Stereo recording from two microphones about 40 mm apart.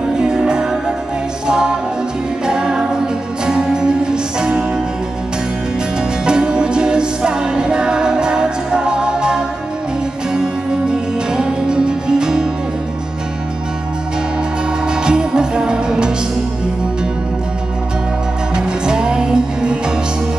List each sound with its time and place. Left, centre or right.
0.0 s music: centre
5.9 s music: right
14.9 s music: right
18.5 s music: right